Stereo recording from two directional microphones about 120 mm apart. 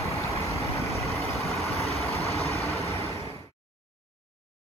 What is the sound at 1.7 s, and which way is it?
Vehicle, 60° left (ahead or behind).